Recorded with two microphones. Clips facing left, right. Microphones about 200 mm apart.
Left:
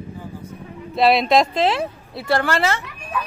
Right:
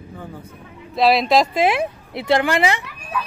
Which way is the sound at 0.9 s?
Centre (ahead or behind).